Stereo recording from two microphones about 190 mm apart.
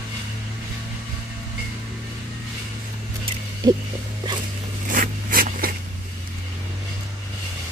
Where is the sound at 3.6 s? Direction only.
20° right (ahead or behind).